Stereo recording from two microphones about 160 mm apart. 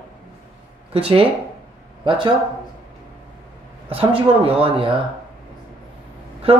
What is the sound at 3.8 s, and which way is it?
Speech, 35° right (ahead or behind).